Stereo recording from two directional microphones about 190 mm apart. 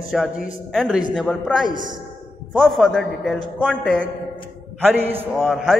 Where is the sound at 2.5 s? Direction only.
Centre (ahead or behind).